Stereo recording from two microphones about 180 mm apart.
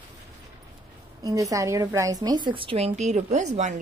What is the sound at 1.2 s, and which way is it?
A woman's voice, 20° right (ahead or behind).